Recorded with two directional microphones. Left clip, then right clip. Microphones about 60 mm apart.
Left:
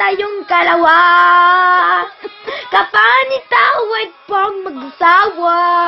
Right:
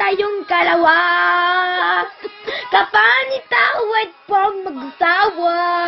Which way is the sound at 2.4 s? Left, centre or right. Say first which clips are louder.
Left 2 dB; centre.